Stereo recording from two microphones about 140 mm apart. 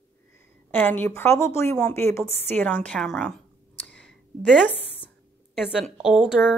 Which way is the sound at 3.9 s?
5° left (ahead or behind).